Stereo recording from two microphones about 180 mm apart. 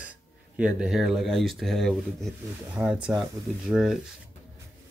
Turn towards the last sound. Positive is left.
turn(degrees=0)  # may be behind; listen again after turning